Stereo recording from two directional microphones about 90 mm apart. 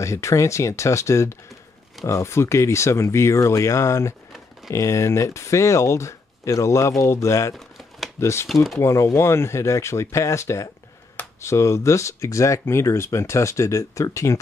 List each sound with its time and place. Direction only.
0.0 s speech: 35° left (ahead or behind)
7.5 s typewriter: centre (ahead or behind)
8.2 s speech: 30° left (ahead or behind)